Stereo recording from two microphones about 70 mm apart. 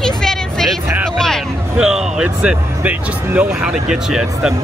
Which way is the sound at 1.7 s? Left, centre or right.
Centre.